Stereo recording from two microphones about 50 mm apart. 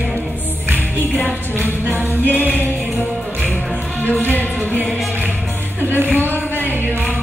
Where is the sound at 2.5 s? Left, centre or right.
Left.